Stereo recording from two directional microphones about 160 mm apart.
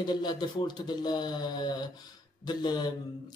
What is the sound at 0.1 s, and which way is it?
Speech, 25° left (ahead or behind).